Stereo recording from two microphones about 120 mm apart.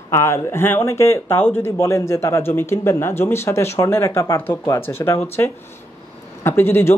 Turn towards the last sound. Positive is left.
turn(degrees=20)  # may be behind; listen again after turning